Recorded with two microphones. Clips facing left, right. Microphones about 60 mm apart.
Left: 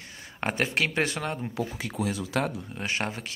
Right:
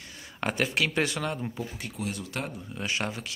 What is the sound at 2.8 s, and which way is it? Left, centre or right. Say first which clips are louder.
Speech: right 1 dB; left.